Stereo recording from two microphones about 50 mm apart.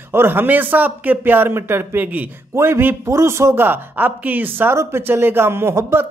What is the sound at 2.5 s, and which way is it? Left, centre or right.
A man's voice, right.